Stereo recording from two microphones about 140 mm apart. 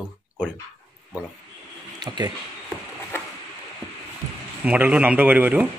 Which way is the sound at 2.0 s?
30° right (ahead or behind).